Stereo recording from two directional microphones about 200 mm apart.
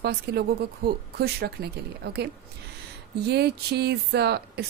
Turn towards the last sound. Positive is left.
turn(degrees=-55)  # may be behind; listen again after turning